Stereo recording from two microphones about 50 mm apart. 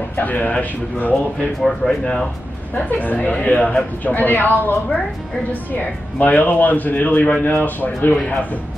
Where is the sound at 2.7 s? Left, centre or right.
Left.